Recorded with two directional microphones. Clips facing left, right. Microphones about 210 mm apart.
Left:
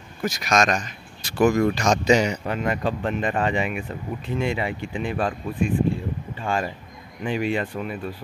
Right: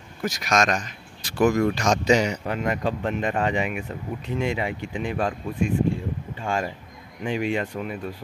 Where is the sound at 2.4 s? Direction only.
10° right (ahead or behind).